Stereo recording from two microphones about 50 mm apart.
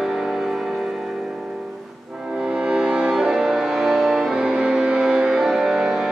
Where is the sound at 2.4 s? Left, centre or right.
Centre.